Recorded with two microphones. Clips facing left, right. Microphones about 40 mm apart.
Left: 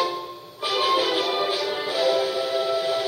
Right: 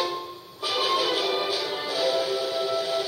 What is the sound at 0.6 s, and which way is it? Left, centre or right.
Music, left.